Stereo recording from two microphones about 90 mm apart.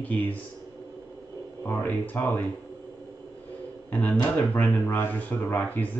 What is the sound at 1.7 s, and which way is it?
Speech, 20° left (ahead or behind).